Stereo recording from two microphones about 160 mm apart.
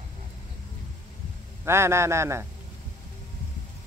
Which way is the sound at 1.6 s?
15° right (ahead or behind).